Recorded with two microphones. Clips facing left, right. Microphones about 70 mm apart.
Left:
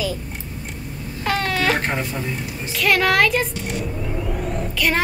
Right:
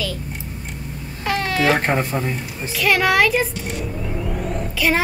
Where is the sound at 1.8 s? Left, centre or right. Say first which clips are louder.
Right 4 dB; right.